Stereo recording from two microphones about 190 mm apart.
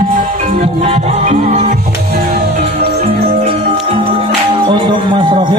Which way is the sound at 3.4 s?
35° right (ahead or behind).